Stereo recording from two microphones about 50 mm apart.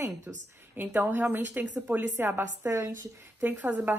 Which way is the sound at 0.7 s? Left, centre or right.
Right.